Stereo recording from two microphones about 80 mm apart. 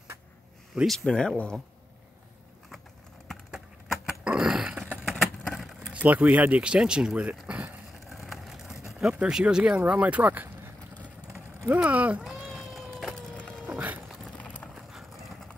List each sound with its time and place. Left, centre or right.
0.8 s speech: centre
3.5 s a sound: centre
5.2 s vehicle: centre
5.9 s speech: centre
8.1 s vehicle: centre
8.8 s speech: centre; by 10.7 s right
11.7 s speech: centre
12.4 s cat: centre
13.4 s a sound: centre
13.7 s a sound: right
14.4 s clip-clop: centre
14.8 s clip-clop: centre